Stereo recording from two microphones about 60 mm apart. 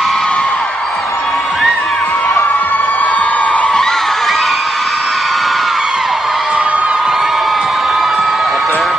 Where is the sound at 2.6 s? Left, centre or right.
Left.